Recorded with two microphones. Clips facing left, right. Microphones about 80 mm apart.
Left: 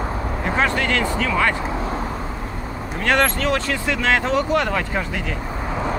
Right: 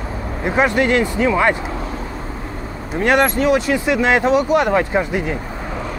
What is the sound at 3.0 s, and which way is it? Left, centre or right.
Speech, centre.